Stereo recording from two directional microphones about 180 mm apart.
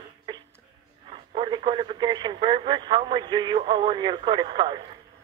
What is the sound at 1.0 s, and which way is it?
Speech, 30° right (ahead or behind).